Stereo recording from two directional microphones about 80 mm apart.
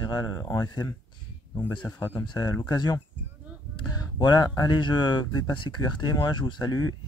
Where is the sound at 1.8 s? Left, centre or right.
Left.